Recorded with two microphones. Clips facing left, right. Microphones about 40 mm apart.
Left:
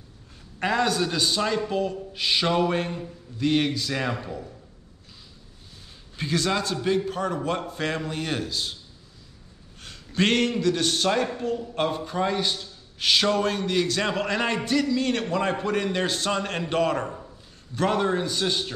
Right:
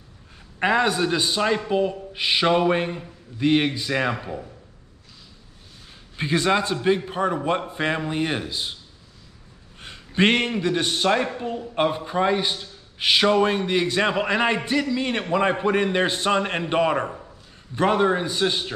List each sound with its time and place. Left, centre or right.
0.6 s a man's voice: right
6.1 s a man's voice: right
9.8 s a man's voice: right